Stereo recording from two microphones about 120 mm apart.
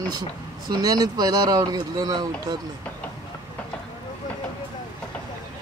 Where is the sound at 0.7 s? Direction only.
35° right (ahead or behind).